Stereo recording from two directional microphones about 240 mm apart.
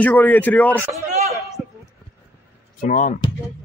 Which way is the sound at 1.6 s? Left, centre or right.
Centre.